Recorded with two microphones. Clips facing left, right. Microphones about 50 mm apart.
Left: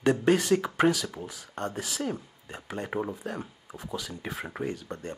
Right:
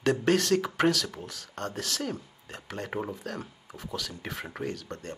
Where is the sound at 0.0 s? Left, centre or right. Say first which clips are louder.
Left 1 dB; centre.